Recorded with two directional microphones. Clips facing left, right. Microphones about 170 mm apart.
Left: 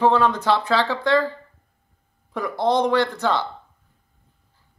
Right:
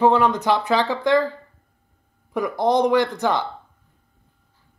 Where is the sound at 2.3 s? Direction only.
15° right (ahead or behind).